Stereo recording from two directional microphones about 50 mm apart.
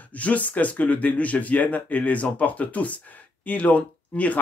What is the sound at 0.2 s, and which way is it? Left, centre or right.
Speech, left.